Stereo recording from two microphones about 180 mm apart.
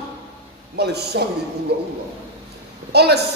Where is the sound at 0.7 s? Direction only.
65° right (ahead or behind).